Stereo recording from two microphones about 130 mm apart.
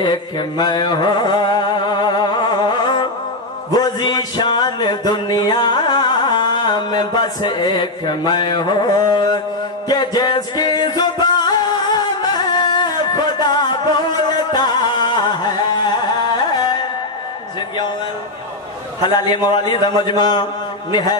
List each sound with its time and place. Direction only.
0.0 s chant: 35° left (ahead or behind)
3.7 s music: 30° left (ahead or behind)
19.0 s a man's voice: 35° left (ahead or behind)